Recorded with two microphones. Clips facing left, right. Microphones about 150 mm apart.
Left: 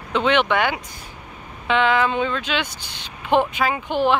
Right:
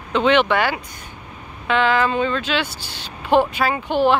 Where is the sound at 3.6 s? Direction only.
5° right (ahead or behind).